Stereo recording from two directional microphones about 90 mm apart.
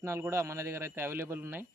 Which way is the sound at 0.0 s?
30° right (ahead or behind).